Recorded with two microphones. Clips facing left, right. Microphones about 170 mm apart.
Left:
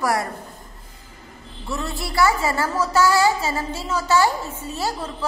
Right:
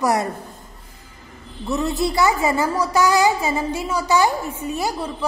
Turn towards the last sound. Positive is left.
turn(degrees=-15)  # may be behind; listen again after turning